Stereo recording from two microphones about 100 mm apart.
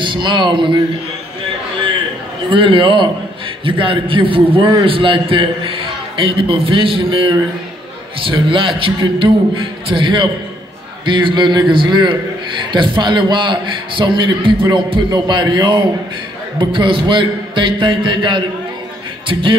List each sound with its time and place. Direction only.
0.0 s a man's voice: 55° right (ahead or behind)
2.5 s a man's voice: 60° right (ahead or behind)